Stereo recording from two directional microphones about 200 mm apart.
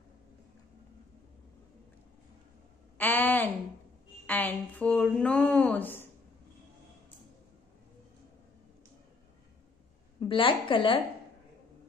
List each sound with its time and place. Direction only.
3.0 s a sound: 10° left (ahead or behind)
4.3 s speech: 10° left (ahead or behind)
10.2 s a woman's voice: 25° left (ahead or behind)